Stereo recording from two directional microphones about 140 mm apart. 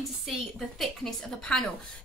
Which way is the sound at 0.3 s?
Centre (ahead or behind).